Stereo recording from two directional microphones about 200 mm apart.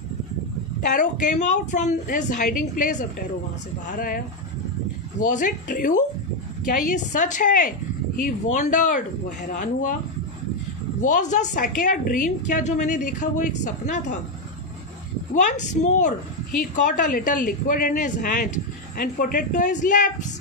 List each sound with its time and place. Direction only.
0.9 s a woman's voice: 40° left (ahead or behind)
5.2 s a woman's voice: 40° left (ahead or behind)
11.0 s a woman's voice: 40° left (ahead or behind)
15.3 s a woman's voice: 40° left (ahead or behind)